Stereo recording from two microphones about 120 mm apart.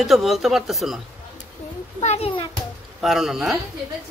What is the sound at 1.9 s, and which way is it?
Speech, 60° left (ahead or behind).